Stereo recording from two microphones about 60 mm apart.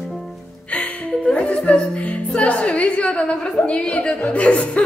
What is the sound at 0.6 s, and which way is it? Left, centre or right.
Speech, centre.